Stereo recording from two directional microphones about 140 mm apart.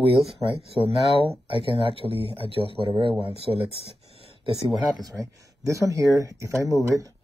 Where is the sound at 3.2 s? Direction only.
45° left (ahead or behind).